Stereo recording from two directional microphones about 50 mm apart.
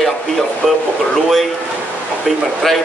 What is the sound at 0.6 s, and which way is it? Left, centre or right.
Speech, centre.